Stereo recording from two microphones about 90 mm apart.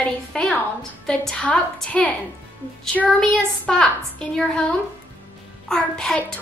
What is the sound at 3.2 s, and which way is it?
Speech, 10° left (ahead or behind).